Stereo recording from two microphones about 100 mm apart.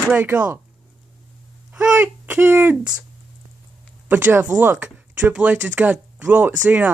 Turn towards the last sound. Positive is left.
turn(degrees=-15)  # may be behind; listen again after turning